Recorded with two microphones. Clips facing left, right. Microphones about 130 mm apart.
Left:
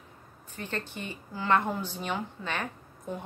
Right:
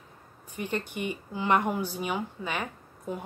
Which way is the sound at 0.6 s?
15° right (ahead or behind).